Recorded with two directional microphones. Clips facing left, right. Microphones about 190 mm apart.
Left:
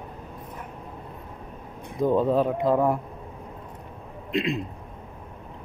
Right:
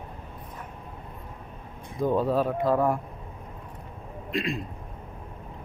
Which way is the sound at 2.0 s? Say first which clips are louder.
Left 3 dB; 20° left (ahead or behind).